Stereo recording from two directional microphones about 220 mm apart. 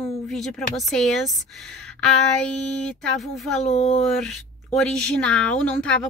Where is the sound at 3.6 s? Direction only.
30° left (ahead or behind).